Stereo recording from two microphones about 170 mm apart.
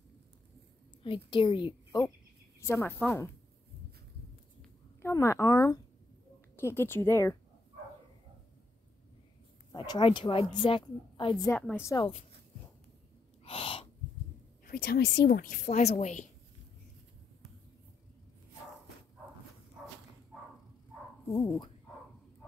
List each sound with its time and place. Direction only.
1.0 s a woman's voice: 30° left (ahead or behind)
2.6 s speech: 15° left (ahead or behind)
5.0 s speech: 15° left (ahead or behind)
9.7 s a woman's voice: 25° left (ahead or behind)
11.5 s speech: 10° left (ahead or behind)
13.4 s gasp: 35° left (ahead or behind)
14.7 s a woman's voice: 60° left (ahead or behind); by 16.3 s 45° left (ahead or behind)
21.3 s speech: 15° left (ahead or behind)